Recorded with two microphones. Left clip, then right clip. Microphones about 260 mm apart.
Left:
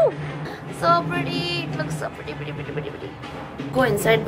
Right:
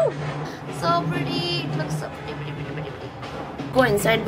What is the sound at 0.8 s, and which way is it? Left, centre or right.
Speech, centre.